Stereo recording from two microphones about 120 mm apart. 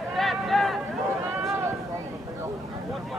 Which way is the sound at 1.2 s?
20° right (ahead or behind).